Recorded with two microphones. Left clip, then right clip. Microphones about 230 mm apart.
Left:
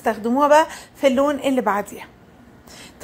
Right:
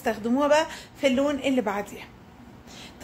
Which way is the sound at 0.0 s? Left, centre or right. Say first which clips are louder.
Left 6 dB; centre.